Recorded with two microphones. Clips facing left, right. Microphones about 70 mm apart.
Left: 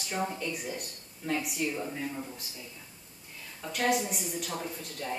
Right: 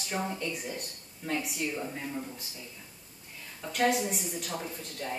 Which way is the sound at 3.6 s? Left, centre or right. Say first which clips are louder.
Right 1 dB; centre.